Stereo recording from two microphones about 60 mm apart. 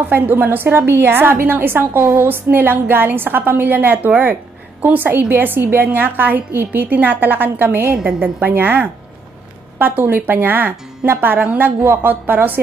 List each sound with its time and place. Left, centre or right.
0.1 s a woman's voice: right